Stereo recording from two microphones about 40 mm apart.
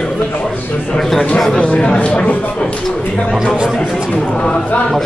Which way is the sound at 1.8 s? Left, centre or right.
Left.